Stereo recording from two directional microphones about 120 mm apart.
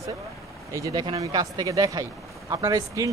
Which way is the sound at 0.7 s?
30° right (ahead or behind).